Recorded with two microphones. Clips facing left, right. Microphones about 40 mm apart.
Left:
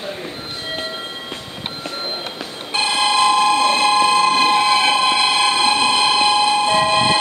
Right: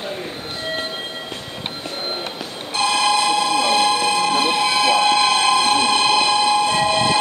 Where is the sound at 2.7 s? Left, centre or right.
Left.